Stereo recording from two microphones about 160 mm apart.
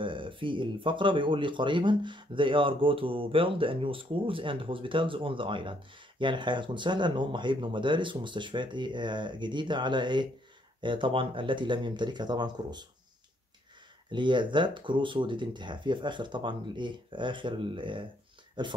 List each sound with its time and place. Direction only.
0.0 s speech: 30° right (ahead or behind)
14.1 s speech: 30° right (ahead or behind)